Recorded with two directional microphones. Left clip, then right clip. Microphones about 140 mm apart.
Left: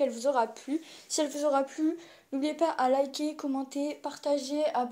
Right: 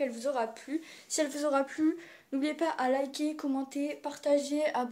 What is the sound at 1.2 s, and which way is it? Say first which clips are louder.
Speech: left 3 dB; centre (ahead or behind).